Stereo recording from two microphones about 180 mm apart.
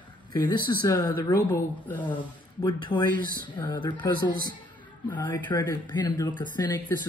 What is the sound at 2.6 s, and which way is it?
Speech, 25° left (ahead or behind).